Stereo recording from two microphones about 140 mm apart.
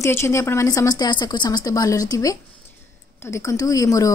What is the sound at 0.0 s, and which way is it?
A woman's voice, 20° left (ahead or behind).